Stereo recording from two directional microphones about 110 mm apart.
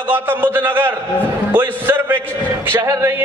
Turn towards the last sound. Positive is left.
turn(degrees=-25)  # may be behind; listen again after turning